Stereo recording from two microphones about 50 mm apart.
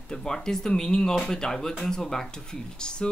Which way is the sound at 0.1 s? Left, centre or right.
Centre.